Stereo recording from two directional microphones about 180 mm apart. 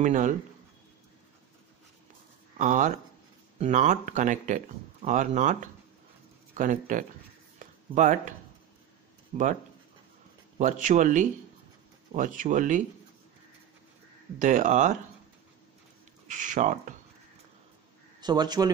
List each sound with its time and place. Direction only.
0.0 s speech: 45° right (ahead or behind)
2.5 s speech: 45° right (ahead or behind)
7.5 s a sound: 45° right (ahead or behind)
9.3 s speech: 40° right (ahead or behind)
10.6 s speech: 45° right (ahead or behind)
14.4 s speech: 45° right (ahead or behind)
16.3 s speech: 45° right (ahead or behind)
18.2 s speech: 25° right (ahead or behind)